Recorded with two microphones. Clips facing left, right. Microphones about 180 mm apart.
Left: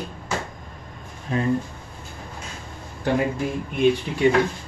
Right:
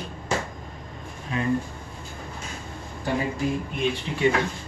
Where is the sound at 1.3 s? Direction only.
40° left (ahead or behind).